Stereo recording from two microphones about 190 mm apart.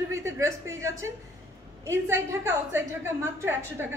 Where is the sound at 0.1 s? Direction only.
15° right (ahead or behind).